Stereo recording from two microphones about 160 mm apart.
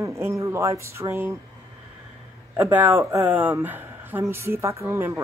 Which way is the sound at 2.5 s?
15° right (ahead or behind).